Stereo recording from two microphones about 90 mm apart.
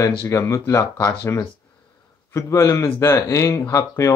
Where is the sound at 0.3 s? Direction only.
35° left (ahead or behind).